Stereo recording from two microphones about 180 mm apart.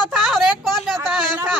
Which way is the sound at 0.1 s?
Centre (ahead or behind).